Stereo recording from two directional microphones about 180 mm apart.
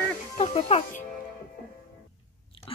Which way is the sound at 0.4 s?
35° left (ahead or behind).